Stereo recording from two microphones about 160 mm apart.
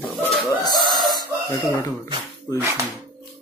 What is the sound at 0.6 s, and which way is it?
Chicken, 25° left (ahead or behind).